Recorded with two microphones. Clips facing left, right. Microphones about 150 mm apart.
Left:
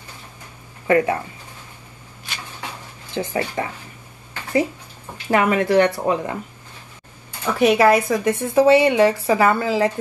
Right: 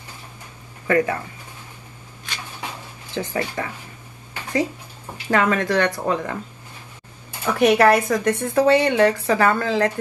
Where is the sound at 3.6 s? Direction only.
30° left (ahead or behind).